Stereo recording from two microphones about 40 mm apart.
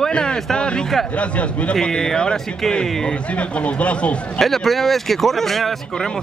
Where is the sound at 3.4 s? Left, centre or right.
Left.